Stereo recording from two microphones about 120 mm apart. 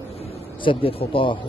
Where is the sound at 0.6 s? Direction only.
45° left (ahead or behind).